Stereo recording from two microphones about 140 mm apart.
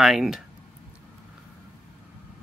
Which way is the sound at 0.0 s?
5° right (ahead or behind).